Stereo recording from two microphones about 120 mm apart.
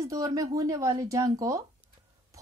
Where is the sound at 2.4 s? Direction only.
30° right (ahead or behind).